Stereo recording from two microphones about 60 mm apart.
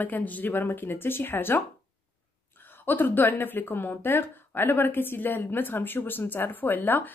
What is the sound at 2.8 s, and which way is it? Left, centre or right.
Speech, left.